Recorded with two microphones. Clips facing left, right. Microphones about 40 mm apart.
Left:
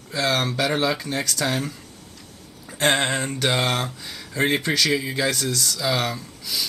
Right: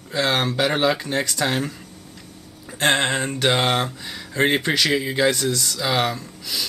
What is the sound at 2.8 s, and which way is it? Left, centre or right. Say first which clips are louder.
Speech: right 1 dB; centre.